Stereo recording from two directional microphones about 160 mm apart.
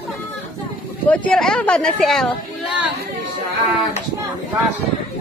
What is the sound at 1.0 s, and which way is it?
Speech, 10° left (ahead or behind).